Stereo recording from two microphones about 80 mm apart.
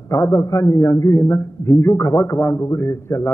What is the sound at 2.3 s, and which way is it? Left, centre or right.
Speech, left.